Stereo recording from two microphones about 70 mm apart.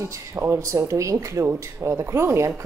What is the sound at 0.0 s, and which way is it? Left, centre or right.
Speech, right.